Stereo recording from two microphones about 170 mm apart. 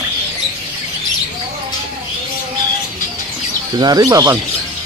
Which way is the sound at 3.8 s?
20° right (ahead or behind).